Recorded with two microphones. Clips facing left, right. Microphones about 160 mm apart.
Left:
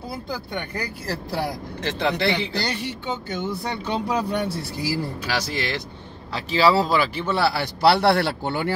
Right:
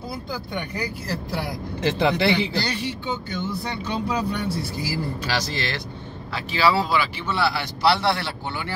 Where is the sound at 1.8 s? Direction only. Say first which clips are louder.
Right 3 dB; 10° right (ahead or behind).